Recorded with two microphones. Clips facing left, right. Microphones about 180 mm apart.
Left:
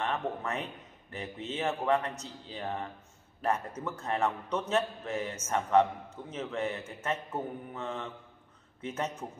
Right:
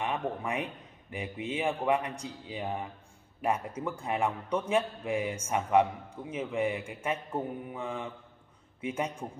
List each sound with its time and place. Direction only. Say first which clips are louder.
0.0 s a man's voice: right 1 dB; 10° right (ahead or behind)